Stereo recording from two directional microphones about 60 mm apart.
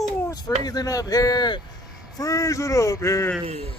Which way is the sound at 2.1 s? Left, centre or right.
Left.